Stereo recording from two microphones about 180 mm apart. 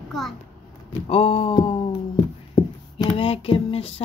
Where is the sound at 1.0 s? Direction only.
30° left (ahead or behind).